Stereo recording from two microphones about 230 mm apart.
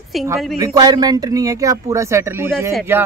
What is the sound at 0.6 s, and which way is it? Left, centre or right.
Speech, centre.